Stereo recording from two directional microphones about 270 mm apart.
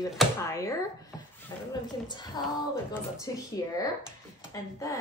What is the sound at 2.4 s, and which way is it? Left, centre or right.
A woman's voice, centre.